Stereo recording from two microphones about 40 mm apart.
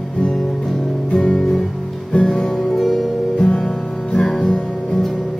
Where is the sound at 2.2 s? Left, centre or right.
Centre.